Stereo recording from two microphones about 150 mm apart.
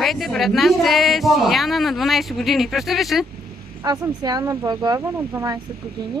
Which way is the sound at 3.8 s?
25° right (ahead or behind).